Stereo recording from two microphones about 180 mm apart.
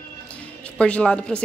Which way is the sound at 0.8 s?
5° left (ahead or behind).